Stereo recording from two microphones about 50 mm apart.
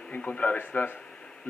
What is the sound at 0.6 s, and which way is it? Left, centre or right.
Speech, left.